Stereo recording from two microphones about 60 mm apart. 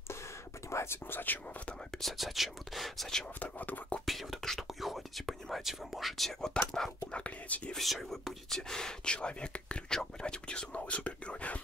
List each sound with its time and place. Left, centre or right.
0.7 s whispering: left
1.1 s speech: left
2.0 s speech: centre
3.3 s speech: left
4.0 s speech: centre
7.1 s speech: centre
7.7 s speech: centre; by 11.6 s left